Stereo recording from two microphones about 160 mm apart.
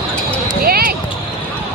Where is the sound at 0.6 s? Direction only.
70° right (ahead or behind).